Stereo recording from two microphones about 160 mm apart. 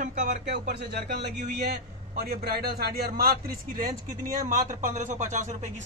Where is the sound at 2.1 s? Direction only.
80° right.